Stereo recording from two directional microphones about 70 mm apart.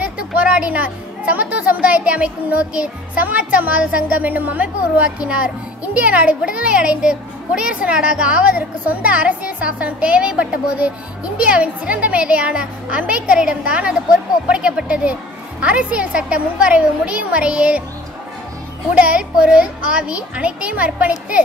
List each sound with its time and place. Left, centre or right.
0.0 s a child's voice: centre
18.9 s a child's voice: centre